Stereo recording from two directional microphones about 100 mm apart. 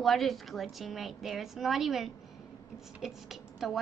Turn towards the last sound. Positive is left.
turn(degrees=-5)  # may be behind; listen again after turning